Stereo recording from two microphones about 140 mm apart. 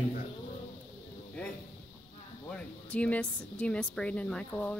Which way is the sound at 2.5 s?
10° left (ahead or behind).